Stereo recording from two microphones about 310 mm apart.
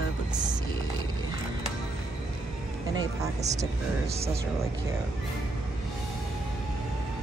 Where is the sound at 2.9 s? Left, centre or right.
Centre.